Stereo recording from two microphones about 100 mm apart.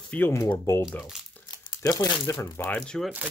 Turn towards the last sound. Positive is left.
turn(degrees=5)  # may be behind; listen again after turning